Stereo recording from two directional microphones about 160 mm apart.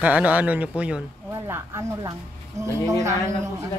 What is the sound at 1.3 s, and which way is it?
Speech, 20° right (ahead or behind).